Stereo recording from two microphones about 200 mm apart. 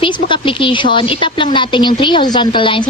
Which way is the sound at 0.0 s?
25° left (ahead or behind).